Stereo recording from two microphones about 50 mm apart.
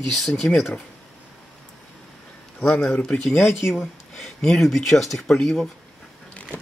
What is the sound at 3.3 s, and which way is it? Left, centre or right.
Speech, left.